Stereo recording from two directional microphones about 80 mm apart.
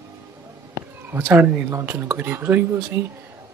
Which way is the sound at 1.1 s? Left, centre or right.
Right.